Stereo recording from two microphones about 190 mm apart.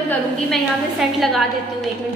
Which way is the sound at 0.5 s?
Centre (ahead or behind).